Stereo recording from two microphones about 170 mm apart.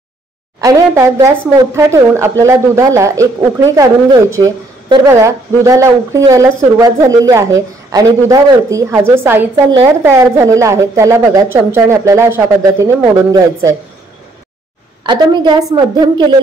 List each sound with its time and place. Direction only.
0.6 s a woman's voice: 20° right (ahead or behind)
15.0 s speech: 25° right (ahead or behind)